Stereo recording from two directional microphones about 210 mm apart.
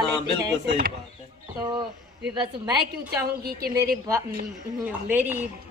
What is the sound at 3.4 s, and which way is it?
Speech, 45° right (ahead or behind).